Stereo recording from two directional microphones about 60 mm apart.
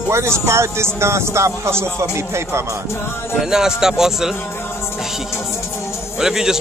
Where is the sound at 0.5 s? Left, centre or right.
Right.